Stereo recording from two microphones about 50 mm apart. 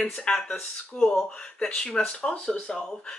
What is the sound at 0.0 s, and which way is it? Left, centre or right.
Speech, centre.